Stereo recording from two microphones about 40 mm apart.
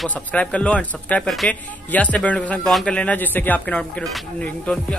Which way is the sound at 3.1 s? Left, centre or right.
Left.